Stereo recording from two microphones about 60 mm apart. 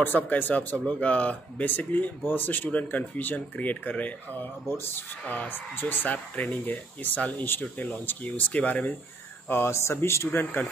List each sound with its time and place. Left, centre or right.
0.0 s speech: left
4.6 s speech: left
5.2 s speech: left
9.5 s speech: left